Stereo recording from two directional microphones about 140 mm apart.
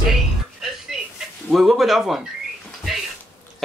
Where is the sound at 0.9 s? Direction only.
Centre (ahead or behind).